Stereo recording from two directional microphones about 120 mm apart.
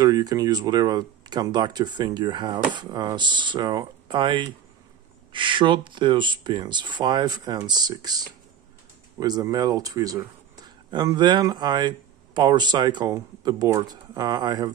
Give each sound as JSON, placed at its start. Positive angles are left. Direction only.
{"t": 0.0, "sound": "speech", "side_deg": -30}